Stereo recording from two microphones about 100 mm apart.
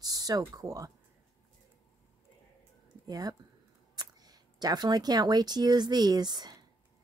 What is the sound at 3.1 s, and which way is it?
A woman's voice, 40° right (ahead or behind).